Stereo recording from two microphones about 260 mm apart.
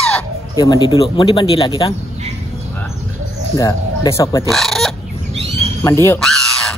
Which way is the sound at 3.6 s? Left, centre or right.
Centre.